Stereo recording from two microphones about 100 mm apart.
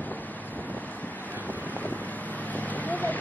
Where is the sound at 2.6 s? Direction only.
15° left (ahead or behind).